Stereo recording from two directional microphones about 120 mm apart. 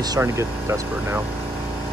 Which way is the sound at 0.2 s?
20° right (ahead or behind).